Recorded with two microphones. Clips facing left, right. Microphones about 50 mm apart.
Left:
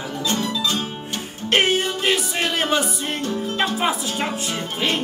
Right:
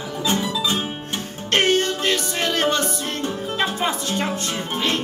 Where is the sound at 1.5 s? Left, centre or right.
Centre.